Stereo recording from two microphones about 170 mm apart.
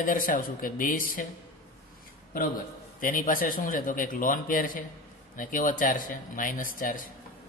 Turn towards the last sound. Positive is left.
turn(degrees=55)  # may be behind; listen again after turning